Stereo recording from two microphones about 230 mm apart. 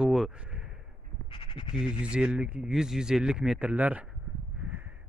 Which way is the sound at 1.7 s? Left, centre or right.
Centre.